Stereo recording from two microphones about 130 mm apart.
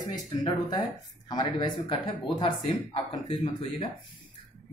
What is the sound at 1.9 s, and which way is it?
Speech, 45° left (ahead or behind).